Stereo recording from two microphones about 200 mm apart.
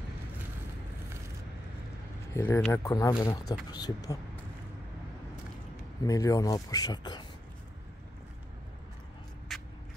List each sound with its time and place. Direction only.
2.3 s speech: 10° left (ahead or behind)
6.0 s speech: 15° left (ahead or behind)
9.5 s vehicle: centre (ahead or behind)